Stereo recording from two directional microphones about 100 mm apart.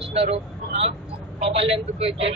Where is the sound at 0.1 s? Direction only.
90° right.